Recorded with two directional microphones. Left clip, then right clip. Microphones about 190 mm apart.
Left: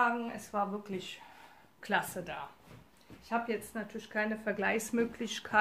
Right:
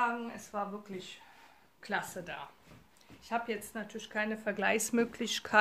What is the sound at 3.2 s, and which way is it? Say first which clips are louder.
Speech: left 1 dB; 40° right (ahead or behind).